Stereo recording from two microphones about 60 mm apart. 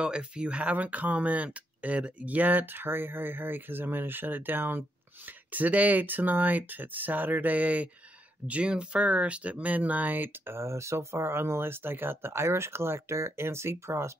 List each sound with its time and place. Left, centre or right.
0.0 s speech: centre; by 14.1 s right